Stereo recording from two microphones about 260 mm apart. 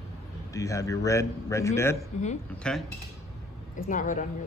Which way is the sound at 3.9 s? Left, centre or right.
Left.